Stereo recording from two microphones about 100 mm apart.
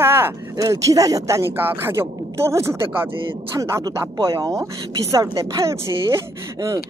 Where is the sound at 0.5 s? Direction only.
35° right (ahead or behind).